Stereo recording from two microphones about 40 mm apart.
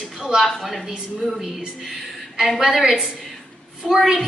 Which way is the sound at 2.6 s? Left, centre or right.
Centre.